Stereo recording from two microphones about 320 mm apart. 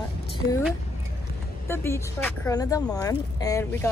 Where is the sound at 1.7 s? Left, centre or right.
Centre.